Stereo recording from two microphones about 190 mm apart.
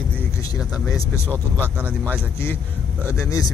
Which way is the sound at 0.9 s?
15° left (ahead or behind).